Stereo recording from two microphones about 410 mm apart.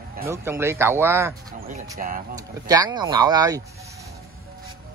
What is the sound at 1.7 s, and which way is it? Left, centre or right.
Speech, centre.